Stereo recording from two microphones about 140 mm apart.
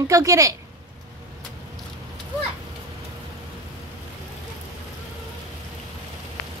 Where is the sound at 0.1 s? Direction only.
25° right (ahead or behind).